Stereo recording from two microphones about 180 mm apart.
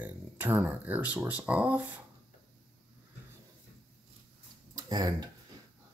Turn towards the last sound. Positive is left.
turn(degrees=-20)  # may be behind; listen again after turning